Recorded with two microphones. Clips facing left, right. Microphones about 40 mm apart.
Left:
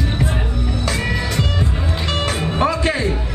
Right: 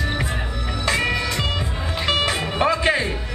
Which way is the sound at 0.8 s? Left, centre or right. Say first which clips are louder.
Right 3 dB; right.